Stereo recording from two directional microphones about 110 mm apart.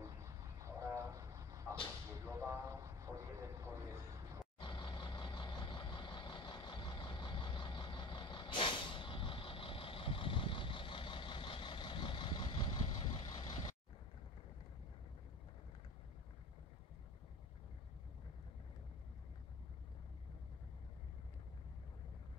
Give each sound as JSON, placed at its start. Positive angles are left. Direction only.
{"t": 0.0, "sound": "vehicle", "side_deg": -30}
{"t": 4.6, "sound": "vehicle", "side_deg": 45}